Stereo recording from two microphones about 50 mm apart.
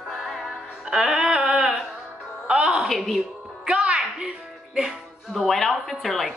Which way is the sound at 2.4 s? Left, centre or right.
Centre.